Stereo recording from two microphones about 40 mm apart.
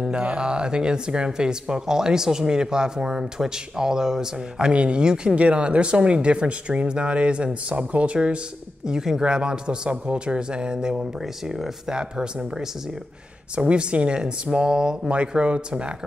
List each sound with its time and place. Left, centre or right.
0.1 s speech: right
5.3 s speech: right
8.8 s speech: centre
11.1 s speech: centre
13.6 s speech: right